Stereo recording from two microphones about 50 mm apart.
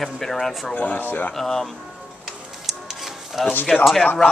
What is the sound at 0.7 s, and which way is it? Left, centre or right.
Speech, left.